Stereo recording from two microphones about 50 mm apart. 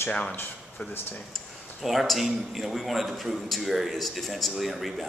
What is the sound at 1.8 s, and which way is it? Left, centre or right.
A man's voice, centre.